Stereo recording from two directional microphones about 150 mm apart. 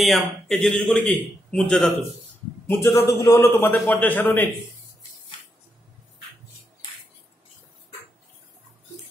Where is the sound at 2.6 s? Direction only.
15° left (ahead or behind).